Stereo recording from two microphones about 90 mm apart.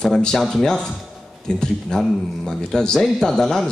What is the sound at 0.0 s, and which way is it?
Speech, 5° left (ahead or behind).